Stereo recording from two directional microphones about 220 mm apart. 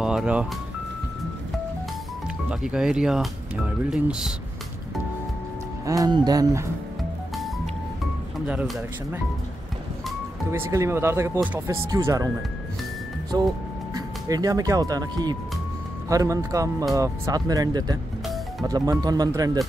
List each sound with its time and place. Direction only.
0.0 s music: 5° right (ahead or behind)
2.6 s speech: 5° right (ahead or behind)
5.9 s speech: 15° right (ahead or behind)
8.5 s speech: 5° right (ahead or behind)
13.3 s speech: 15° right (ahead or behind)